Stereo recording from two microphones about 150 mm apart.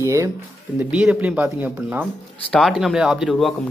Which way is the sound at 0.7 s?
10° right (ahead or behind).